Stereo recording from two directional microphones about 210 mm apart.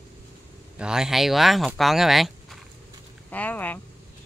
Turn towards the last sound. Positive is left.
turn(degrees=10)  # may be behind; listen again after turning